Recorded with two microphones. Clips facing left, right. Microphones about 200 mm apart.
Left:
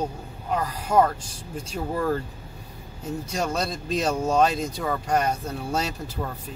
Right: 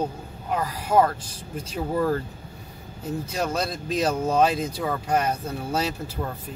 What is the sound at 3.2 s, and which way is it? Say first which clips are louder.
Speech: even; 5° right (ahead or behind).